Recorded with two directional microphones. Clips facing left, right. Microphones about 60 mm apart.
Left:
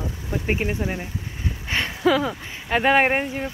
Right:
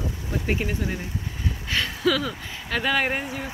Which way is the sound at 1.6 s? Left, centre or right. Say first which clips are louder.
Left 3 dB; left.